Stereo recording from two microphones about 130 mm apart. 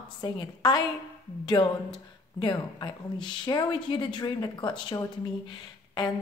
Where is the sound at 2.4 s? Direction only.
35° left (ahead or behind).